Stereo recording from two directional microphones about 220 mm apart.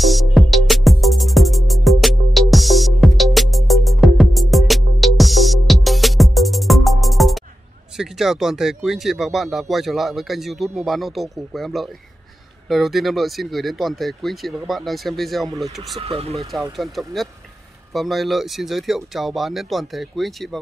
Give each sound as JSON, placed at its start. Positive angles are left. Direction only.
{"t": 0.0, "sound": "music", "side_deg": 0}
{"t": 7.9, "sound": "speech", "side_deg": 0}
{"t": 16.0, "sound": "speech", "side_deg": -25}
{"t": 16.3, "sound": "speech", "side_deg": 0}